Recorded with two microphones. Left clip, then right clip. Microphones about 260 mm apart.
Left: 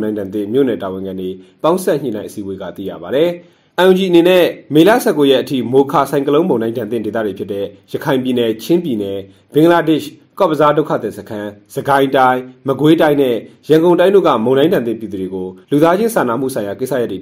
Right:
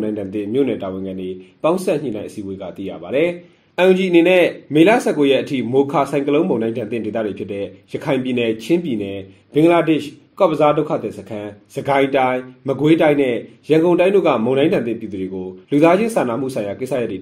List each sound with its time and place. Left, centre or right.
0.0 s speech: left